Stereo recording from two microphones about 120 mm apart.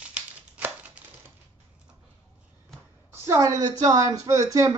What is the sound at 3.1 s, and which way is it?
Speech, 25° right (ahead or behind).